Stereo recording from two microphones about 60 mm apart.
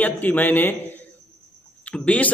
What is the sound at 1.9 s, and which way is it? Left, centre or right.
Speech, left.